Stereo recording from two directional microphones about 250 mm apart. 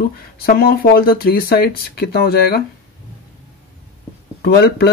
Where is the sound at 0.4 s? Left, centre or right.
Left.